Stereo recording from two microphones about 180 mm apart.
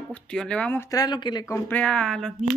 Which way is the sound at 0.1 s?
5° left (ahead or behind).